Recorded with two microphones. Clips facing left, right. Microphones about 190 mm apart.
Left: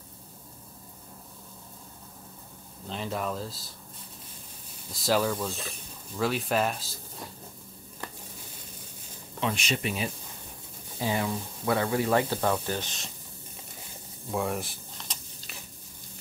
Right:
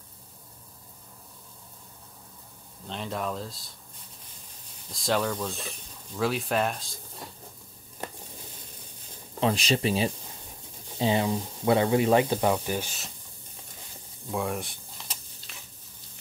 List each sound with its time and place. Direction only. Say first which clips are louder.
2.9 s speech: even; centre (ahead or behind)
4.9 s speech: left 1 dB; 5° left (ahead or behind)
9.4 s speech: right 5 dB; 35° right (ahead or behind); by 13.1 s 5° right (ahead or behind)
14.3 s a sound: even; centre (ahead or behind)